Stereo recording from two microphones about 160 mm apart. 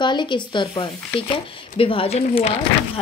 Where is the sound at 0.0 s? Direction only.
30° left (ahead or behind).